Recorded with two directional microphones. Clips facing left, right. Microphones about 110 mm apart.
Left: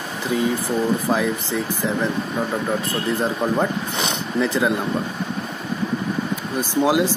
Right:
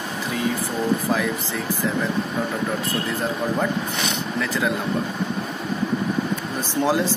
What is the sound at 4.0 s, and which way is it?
Speech, 25° left (ahead or behind).